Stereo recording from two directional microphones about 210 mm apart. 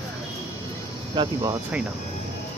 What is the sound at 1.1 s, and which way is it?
Speech, 20° right (ahead or behind).